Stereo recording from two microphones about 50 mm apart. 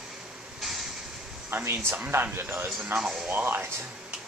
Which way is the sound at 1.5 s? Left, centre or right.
Right.